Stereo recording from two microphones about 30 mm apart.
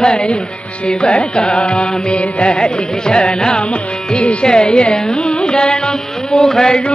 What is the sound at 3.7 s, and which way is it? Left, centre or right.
Carnatic music, left.